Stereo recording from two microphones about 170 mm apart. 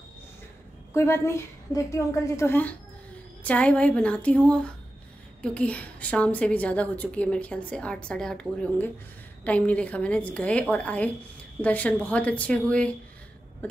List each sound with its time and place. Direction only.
0.9 s a woman's voice: 15° left (ahead or behind)